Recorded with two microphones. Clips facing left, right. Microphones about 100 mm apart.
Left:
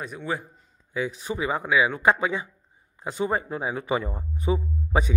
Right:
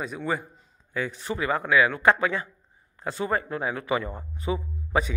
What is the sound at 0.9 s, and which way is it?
Speech, 10° left (ahead or behind).